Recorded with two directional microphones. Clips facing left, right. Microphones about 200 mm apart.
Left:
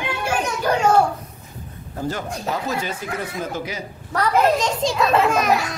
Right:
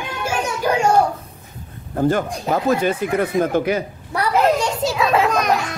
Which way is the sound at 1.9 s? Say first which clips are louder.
Right 8 dB; 55° right (ahead or behind).